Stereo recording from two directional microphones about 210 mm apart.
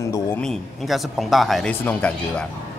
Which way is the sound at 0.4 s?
Centre (ahead or behind).